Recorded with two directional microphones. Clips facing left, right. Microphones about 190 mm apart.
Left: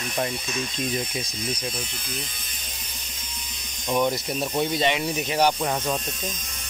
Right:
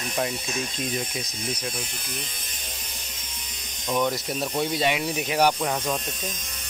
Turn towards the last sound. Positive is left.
turn(degrees=5)  # may be behind; listen again after turning